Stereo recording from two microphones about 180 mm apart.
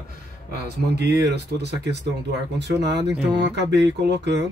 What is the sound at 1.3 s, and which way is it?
Speech, 70° right (ahead or behind).